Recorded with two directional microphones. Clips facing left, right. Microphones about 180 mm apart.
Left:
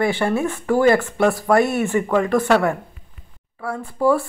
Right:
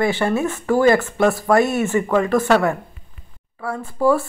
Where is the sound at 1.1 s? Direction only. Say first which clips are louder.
Right 1 dB; 15° left (ahead or behind).